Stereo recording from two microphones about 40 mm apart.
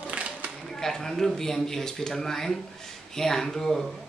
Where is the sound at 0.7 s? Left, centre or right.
Centre.